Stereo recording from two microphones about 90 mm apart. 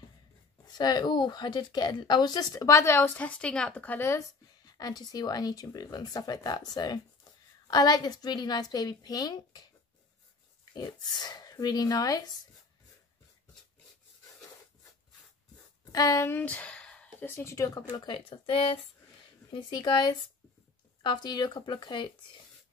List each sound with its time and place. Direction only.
0.7 s speech: 55° left (ahead or behind); by 3.1 s 30° left (ahead or behind)
3.2 s speech: 15° left (ahead or behind)
4.6 s speech: 50° left (ahead or behind)
15.8 s speech: 40° left (ahead or behind)
16.3 s a sound: 20° left (ahead or behind)
17.3 s speech: 30° left (ahead or behind)
17.7 s speech: 50° left (ahead or behind)
18.0 s speech: 75° left (ahead or behind)
19.5 s speech: 55° left (ahead or behind)